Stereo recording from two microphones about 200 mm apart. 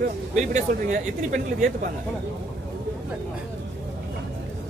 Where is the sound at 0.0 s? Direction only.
40° right (ahead or behind).